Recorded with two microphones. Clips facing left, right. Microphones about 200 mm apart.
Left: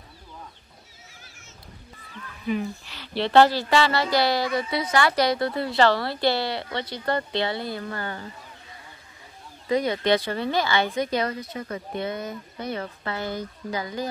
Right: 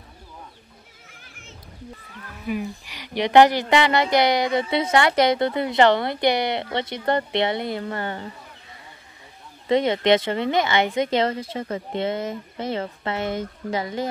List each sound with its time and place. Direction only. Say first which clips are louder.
1.2 s neigh: right 4 dB; 55° right (ahead or behind)
2.4 s a woman's voice: even; 5° right (ahead or behind); by 8.3 s 25° right (ahead or behind)
9.7 s a woman's voice: right 4 dB; 25° right (ahead or behind)